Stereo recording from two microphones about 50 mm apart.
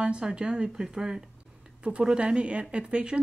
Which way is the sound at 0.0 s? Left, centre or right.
Centre.